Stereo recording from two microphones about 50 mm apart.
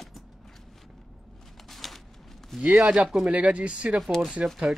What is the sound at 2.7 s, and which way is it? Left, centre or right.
Speech, centre.